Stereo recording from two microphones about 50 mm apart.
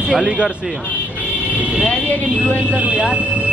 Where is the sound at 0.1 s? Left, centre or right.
Right.